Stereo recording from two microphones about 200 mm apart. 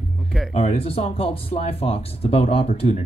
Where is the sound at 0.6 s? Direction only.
30° left (ahead or behind).